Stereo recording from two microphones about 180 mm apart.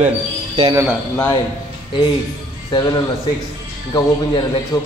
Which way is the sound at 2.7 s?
20° left (ahead or behind).